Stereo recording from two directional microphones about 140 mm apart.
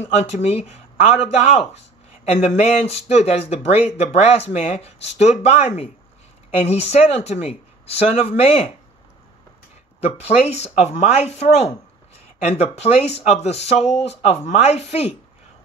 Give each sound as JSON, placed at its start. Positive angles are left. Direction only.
{"t": 0.0, "sound": "speech", "side_deg": 50}
{"t": 10.2, "sound": "speech", "side_deg": 50}